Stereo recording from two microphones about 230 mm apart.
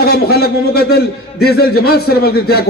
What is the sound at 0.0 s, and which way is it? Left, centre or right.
A man's voice, left.